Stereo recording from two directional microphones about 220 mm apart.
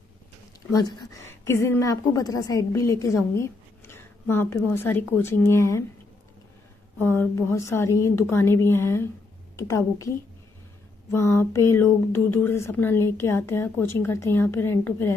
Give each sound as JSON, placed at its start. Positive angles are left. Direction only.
{"t": 0.7, "sound": "a woman's voice", "side_deg": 20}
{"t": 7.0, "sound": "a woman's voice", "side_deg": 10}